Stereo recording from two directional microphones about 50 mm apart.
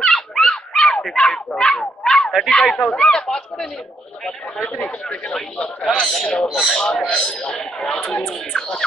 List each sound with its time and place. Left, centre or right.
0.1 s a sound: centre
1.5 s dog: centre
2.5 s a man's voice: centre
4.7 s speech: left
6.4 s speech: centre
7.1 s a man's voice: centre